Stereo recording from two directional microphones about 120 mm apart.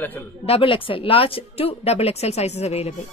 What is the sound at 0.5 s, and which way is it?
A woman's voice, 50° left (ahead or behind).